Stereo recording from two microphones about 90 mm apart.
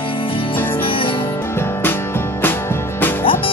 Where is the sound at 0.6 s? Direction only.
25° left (ahead or behind).